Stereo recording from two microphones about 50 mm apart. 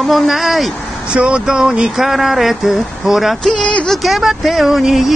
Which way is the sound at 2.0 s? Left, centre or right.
Centre.